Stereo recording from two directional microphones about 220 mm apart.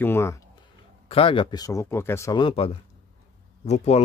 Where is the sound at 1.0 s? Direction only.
25° left (ahead or behind).